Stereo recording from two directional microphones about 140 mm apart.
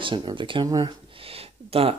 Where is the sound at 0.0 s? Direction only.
35° right (ahead or behind).